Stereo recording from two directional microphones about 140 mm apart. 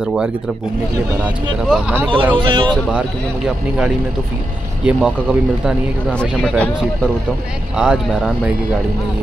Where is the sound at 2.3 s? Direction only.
35° right (ahead or behind).